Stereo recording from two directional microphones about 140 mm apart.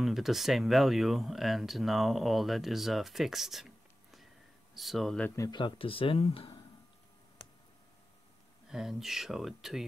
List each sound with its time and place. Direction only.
0.0 s speech: centre (ahead or behind)
5.3 s speech: 25° left (ahead or behind); by 6.5 s 45° left (ahead or behind)
8.6 s speech: 5° right (ahead or behind)